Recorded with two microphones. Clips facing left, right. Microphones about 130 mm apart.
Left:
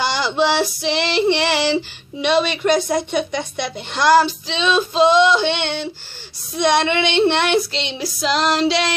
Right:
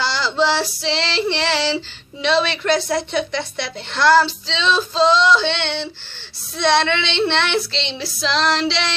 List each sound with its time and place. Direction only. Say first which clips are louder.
0.0 s female singing: left 1 dB; 15° left (ahead or behind)
0.8 s a woman's voice: left 4 dB; 15° left (ahead or behind)
8.4 s female singing: left 1 dB; 20° left (ahead or behind)